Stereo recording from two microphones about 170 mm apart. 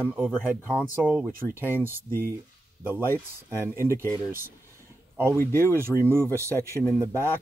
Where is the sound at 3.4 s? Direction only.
15° right (ahead or behind).